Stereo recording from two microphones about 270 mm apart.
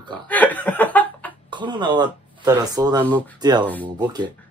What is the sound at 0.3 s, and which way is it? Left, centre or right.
Speech, centre.